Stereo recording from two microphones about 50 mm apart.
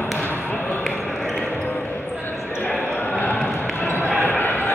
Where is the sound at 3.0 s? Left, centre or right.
Left.